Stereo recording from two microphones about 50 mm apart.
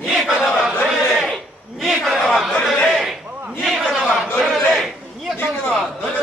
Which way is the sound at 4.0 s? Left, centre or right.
Centre.